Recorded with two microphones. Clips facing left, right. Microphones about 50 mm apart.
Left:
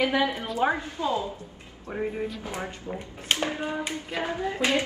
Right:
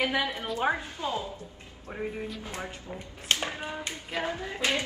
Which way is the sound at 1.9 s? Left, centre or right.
Centre.